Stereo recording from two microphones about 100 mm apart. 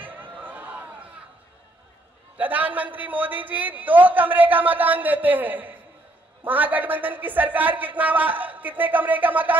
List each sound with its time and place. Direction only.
0.0 s chatter: 15° right (ahead or behind)
2.3 s a man's voice: 15° right (ahead or behind)